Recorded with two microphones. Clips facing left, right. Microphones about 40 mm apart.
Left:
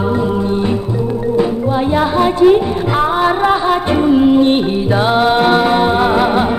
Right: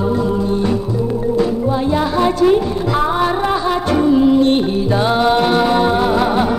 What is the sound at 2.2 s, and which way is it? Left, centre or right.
Music, left.